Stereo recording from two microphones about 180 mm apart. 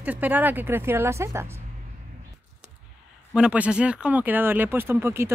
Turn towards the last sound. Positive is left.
turn(degrees=-15)  # may be behind; listen again after turning